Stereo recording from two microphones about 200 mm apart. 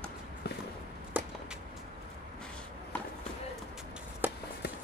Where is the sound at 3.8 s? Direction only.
5° right (ahead or behind).